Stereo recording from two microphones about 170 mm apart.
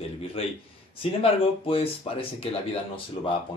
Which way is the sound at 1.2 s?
35° left (ahead or behind).